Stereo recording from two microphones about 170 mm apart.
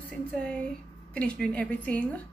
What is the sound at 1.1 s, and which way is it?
Speech, 5° left (ahead or behind).